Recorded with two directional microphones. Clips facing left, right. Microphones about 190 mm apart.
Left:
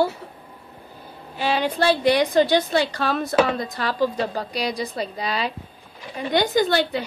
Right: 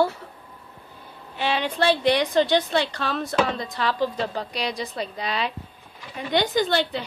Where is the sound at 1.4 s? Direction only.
40° left (ahead or behind).